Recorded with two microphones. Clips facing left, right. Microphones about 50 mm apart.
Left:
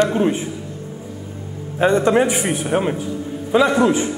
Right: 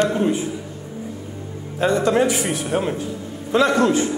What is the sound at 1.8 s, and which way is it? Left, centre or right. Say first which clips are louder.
A man's voice: left 3 dB; left.